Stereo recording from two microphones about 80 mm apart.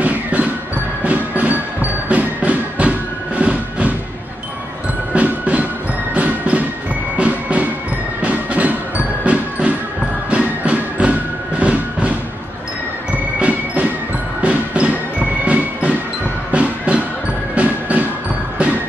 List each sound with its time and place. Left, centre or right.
0.0 s music: centre
5.1 s music: centre
13.4 s music: centre